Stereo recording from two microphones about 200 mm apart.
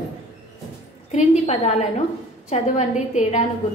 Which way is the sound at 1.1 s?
35° left (ahead or behind).